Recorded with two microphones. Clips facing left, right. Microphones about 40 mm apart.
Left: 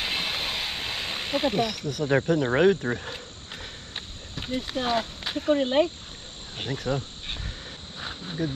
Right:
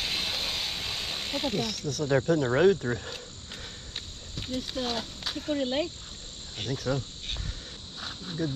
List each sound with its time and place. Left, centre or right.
0.0 s hiss: left
1.6 s speech: centre
2.2 s cricket: left
6.5 s speech: left